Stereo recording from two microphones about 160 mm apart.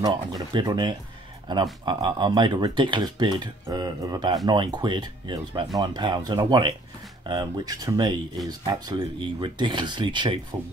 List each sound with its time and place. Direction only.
0.0 s speech: 25° right (ahead or behind)